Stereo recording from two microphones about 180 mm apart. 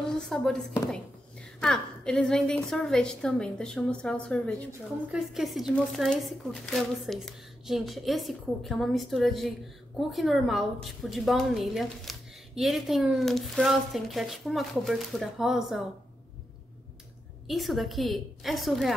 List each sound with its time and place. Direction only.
0.2 s a woman's voice: 5° left (ahead or behind)
17.5 s a woman's voice: centre (ahead or behind)